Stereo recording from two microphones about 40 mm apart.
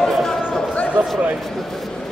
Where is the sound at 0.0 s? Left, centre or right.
Centre.